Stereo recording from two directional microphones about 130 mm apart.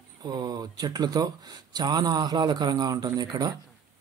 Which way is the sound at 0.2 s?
30° right (ahead or behind).